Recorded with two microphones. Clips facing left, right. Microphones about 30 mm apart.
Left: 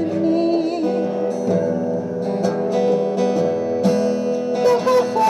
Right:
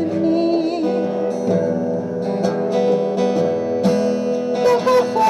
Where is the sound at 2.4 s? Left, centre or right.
Right.